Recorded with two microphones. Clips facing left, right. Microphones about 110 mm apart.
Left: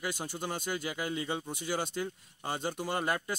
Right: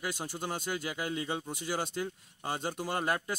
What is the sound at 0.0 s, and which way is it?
Speech, 5° right (ahead or behind).